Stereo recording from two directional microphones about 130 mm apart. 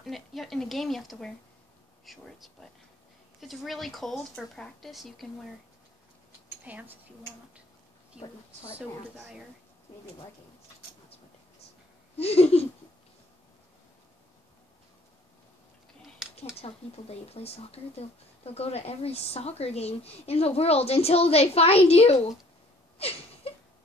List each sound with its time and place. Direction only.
0.0 s a woman's voice: centre (ahead or behind)
6.6 s a woman's voice: 15° right (ahead or behind)
8.6 s a woman's voice: 5° right (ahead or behind)
12.2 s speech: 50° left (ahead or behind)
16.2 s a sound: 5° right (ahead or behind)
16.6 s speech: 50° left (ahead or behind)
22.9 s a sound: 50° left (ahead or behind)